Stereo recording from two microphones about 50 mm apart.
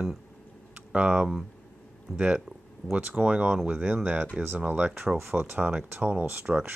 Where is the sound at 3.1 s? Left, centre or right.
Right.